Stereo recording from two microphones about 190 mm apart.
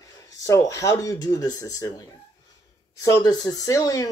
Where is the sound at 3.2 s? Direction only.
20° left (ahead or behind).